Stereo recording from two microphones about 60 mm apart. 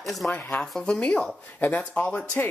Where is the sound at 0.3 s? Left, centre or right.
Left.